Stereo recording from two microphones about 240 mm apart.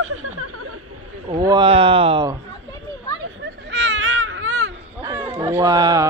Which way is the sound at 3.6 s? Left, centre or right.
Right.